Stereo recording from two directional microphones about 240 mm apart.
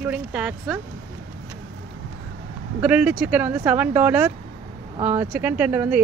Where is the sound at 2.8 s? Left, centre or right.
Centre.